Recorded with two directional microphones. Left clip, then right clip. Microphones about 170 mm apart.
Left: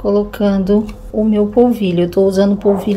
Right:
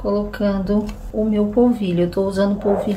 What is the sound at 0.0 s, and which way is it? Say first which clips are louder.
A woman's voice: left 6 dB; 40° left (ahead or behind).